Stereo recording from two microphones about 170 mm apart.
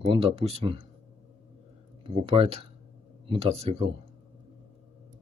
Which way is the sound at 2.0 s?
30° right (ahead or behind).